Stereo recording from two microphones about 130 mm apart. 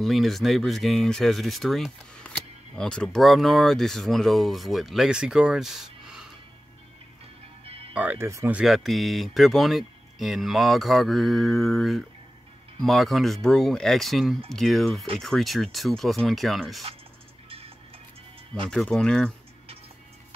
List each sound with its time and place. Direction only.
0.0 s speech: centre (ahead or behind)
7.9 s speech: 15° right (ahead or behind)
8.5 s speech: 5° right (ahead or behind)
17.5 s music: 50° right (ahead or behind)
18.7 s speech: 5° left (ahead or behind)